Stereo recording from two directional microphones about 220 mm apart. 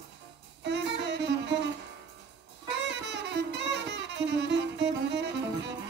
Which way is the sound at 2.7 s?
50° right (ahead or behind).